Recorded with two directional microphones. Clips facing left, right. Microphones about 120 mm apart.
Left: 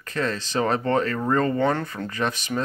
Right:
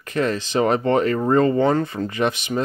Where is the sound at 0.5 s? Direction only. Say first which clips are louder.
Right 4 dB; 25° right (ahead or behind).